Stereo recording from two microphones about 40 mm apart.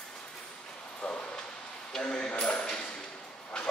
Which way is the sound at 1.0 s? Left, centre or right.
Left.